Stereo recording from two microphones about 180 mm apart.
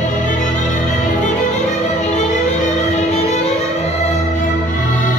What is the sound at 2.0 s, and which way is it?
Music, 40° left (ahead or behind).